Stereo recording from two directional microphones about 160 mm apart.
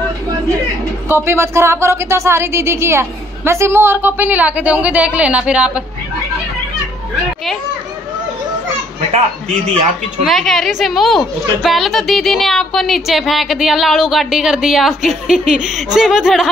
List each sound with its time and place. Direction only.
1.0 s speech: 15° right (ahead or behind)
10.2 s a woman's voice: centre (ahead or behind)